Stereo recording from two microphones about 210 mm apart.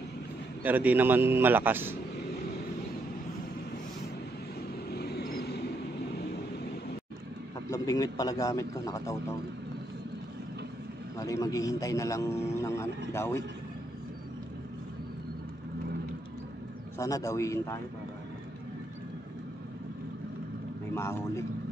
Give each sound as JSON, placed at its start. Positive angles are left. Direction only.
{"t": 0.7, "sound": "a man's voice", "side_deg": -10}
{"t": 4.9, "sound": "vehicle", "side_deg": 50}
{"t": 7.7, "sound": "a man's voice", "side_deg": 15}
{"t": 11.1, "sound": "a man's voice", "side_deg": 15}
{"t": 17.0, "sound": "a man's voice", "side_deg": 15}
{"t": 20.9, "sound": "a man's voice", "side_deg": 15}